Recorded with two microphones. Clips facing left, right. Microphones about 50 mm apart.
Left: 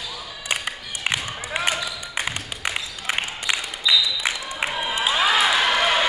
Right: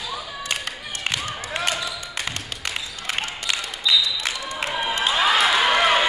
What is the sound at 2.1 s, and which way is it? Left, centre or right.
Music, centre.